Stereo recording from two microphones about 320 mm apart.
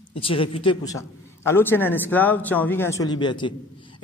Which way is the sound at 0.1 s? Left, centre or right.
Centre.